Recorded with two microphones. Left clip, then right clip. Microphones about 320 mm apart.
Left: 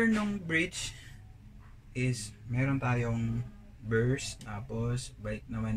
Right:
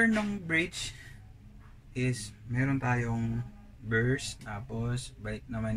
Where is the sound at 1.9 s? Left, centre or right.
Centre.